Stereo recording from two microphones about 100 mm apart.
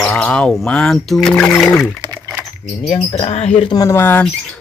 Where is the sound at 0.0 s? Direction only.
10° left (ahead or behind).